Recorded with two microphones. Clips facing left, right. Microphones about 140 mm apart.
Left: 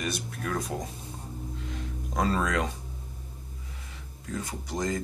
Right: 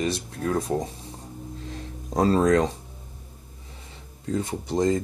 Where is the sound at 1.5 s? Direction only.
35° right (ahead or behind).